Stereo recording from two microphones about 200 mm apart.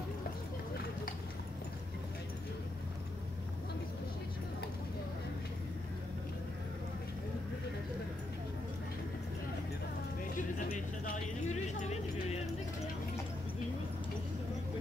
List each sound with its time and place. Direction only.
10.6 s clip-clop: 40° left (ahead or behind)